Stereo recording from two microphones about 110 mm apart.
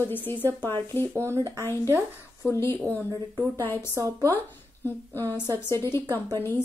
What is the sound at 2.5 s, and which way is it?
Speech, 20° left (ahead or behind).